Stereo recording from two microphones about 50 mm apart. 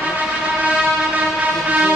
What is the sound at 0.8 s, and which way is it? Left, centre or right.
Train, right.